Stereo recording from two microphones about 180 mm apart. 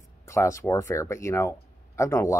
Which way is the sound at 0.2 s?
15° left (ahead or behind).